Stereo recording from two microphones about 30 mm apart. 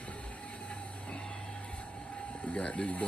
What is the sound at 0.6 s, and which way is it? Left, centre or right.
Train, left.